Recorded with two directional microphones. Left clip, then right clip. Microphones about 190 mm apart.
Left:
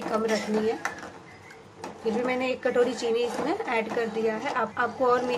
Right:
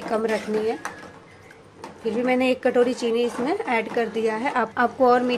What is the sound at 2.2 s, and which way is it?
A woman's voice, 25° right (ahead or behind).